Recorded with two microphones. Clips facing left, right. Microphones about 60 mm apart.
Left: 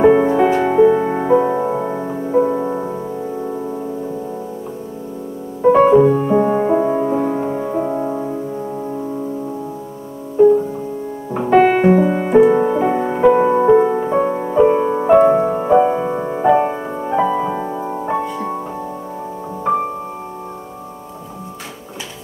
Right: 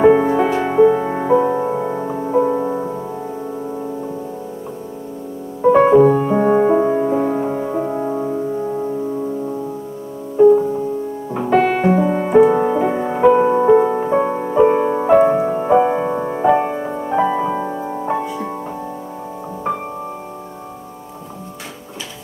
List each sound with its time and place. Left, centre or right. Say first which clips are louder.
0.0 s music: left 1 dB; centre
5.7 s music: even; centre
10.3 s music: right 1 dB; centre
11.3 s music: left 3 dB; centre
12.3 s music: even; centre
15.0 s music: left 2 dB; centre